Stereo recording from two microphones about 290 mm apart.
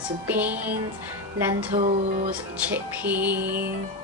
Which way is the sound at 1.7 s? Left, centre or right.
Right.